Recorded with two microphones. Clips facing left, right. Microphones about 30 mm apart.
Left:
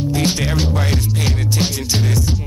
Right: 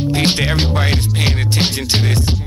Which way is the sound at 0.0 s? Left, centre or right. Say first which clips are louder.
Right 3 dB; right.